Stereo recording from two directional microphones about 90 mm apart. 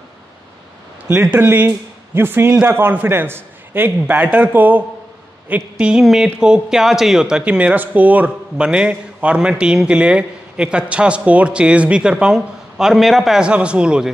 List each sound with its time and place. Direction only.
1.3 s a man's voice: 20° right (ahead or behind)